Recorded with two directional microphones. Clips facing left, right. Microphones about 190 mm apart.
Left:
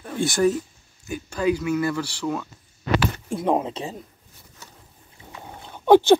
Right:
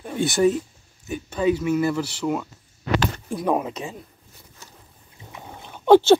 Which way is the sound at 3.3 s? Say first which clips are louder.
Left 1 dB; 25° left (ahead or behind).